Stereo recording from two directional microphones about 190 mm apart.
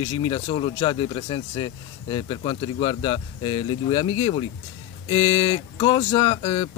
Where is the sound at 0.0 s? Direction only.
30° left (ahead or behind).